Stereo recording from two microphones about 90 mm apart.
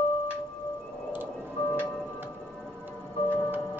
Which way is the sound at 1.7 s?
20° left (ahead or behind).